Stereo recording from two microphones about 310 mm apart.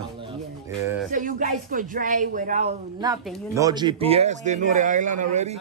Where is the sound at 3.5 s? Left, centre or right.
Centre.